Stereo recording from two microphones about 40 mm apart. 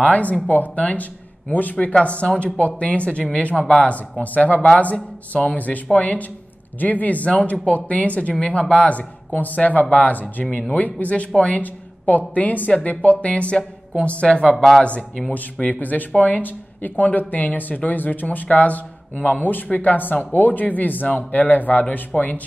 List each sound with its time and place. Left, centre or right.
0.0 s a woman's voice: left
4.2 s a woman's voice: left
7.2 s a woman's voice: left
10.4 s speech: centre
10.7 s a woman's voice: left
14.2 s speech: left
15.6 s a woman's voice: left